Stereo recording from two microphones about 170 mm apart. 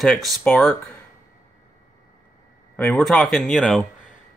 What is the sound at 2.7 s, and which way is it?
Speech, 10° left (ahead or behind).